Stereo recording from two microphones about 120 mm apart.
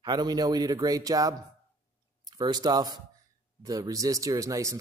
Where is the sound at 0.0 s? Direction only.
35° right (ahead or behind).